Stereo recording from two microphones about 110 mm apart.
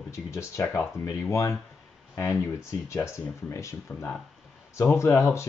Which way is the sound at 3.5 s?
25° left (ahead or behind).